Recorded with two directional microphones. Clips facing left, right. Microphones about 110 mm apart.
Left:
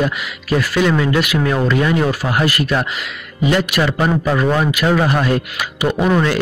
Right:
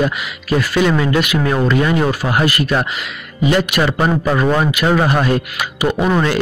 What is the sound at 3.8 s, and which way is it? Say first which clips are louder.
A man's voice: right 1 dB; 20° right (ahead or behind).